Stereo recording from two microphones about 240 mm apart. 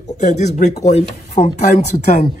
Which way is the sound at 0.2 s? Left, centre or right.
Left.